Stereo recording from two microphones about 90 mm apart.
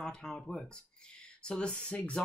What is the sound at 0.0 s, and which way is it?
Speech, 10° left (ahead or behind).